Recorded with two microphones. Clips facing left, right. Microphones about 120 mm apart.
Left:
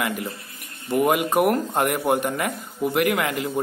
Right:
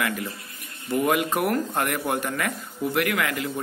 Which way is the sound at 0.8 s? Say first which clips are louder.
Left 2 dB; 20° left (ahead or behind).